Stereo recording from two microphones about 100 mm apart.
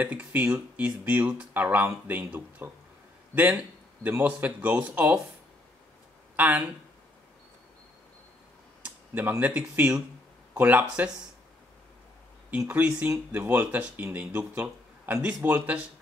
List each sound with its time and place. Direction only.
0.0 s speech: 15° right (ahead or behind)
6.3 s speech: 15° right (ahead or behind)
8.8 s speech: 20° right (ahead or behind)
12.4 s speech: 15° right (ahead or behind)